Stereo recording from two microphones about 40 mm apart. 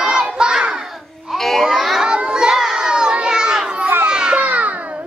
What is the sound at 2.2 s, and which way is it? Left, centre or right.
Children playing, centre.